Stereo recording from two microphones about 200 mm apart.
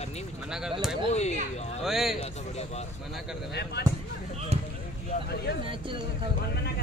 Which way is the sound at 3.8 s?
55° left (ahead or behind).